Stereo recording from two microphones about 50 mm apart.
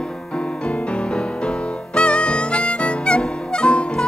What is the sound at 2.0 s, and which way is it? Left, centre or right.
Harmonica, left.